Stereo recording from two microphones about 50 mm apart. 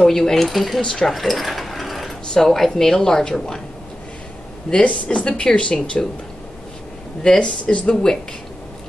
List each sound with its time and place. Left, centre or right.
0.0 s speech: centre
0.8 s a woman's voice: centre
1.1 s mechanisms: centre
2.3 s a woman's voice: centre
4.8 s speech: left
7.2 s speech: left